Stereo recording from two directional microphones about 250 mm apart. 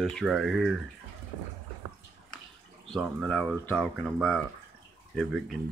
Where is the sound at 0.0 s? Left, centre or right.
Centre.